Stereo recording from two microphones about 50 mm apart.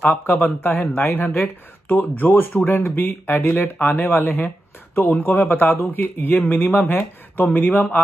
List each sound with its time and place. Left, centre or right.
0.1 s speech: left